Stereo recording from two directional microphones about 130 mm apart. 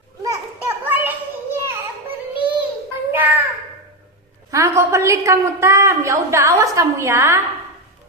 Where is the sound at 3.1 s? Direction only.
15° right (ahead or behind).